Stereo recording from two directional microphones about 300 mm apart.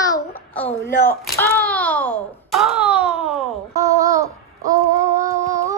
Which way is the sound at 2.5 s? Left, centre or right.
Centre.